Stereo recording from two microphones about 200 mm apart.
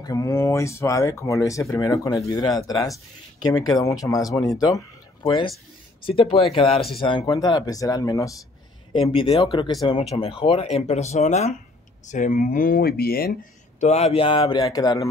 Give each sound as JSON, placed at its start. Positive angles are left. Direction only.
{"t": 0.0, "sound": "speech", "side_deg": 15}
{"t": 8.9, "sound": "speech", "side_deg": 25}